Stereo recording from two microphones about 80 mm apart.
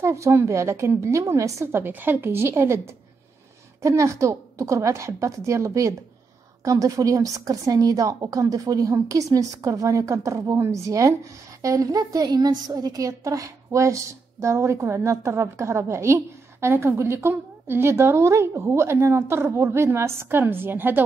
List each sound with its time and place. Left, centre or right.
0.0 s a woman's voice: right
3.8 s a woman's voice: right